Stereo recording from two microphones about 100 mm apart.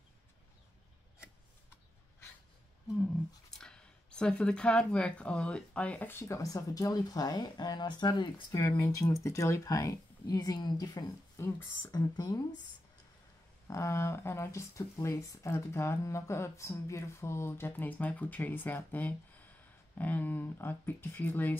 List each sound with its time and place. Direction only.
3.0 s speech: 5° left (ahead or behind); by 8.3 s 45° left (ahead or behind)
8.5 s speech: 30° left (ahead or behind)
13.7 s speech: 30° left (ahead or behind)